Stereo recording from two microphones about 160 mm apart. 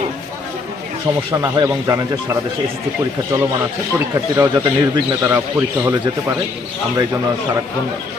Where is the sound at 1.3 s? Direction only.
20° right (ahead or behind).